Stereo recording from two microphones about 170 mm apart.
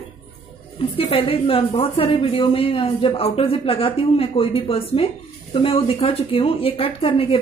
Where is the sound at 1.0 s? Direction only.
35° left (ahead or behind).